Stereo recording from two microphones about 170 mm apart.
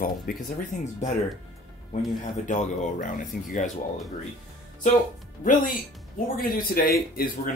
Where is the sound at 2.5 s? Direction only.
50° left (ahead or behind).